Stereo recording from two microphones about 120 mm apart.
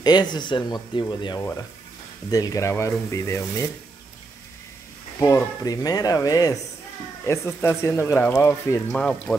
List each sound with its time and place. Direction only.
0.0 s speech: 35° left (ahead or behind)
5.2 s speech: 30° left (ahead or behind)